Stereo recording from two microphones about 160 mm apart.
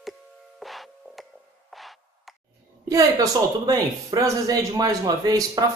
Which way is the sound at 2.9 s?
20° right (ahead or behind).